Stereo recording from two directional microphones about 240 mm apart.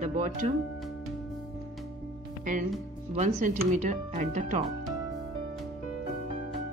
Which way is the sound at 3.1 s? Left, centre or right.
Right.